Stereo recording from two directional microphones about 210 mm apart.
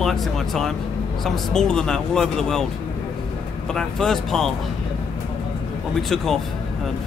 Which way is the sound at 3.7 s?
Centre (ahead or behind).